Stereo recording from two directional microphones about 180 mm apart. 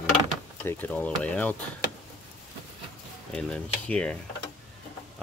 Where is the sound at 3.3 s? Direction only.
5° left (ahead or behind).